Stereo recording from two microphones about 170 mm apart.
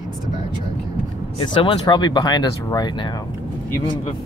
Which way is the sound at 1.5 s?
30° left (ahead or behind).